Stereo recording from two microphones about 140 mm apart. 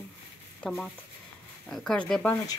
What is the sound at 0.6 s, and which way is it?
Speech, 5° left (ahead or behind).